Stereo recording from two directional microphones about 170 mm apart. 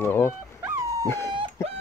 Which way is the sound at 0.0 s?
15° left (ahead or behind).